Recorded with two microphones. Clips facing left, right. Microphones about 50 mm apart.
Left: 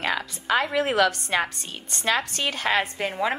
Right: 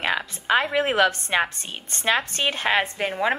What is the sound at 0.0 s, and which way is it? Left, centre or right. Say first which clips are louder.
A woman's voice: right 2 dB; right.